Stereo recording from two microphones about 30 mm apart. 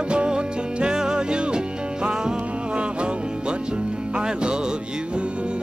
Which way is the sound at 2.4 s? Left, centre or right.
Right.